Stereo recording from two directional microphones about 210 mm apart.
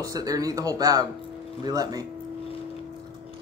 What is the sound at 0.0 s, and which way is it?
Speech, 15° right (ahead or behind).